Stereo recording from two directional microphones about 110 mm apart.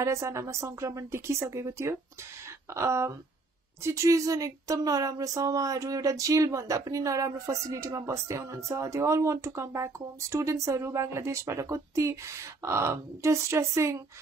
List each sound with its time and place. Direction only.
0.0 s speech: 25° right (ahead or behind)